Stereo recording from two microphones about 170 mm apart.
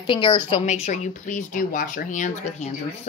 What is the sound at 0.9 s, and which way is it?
Speech, 45° left (ahead or behind).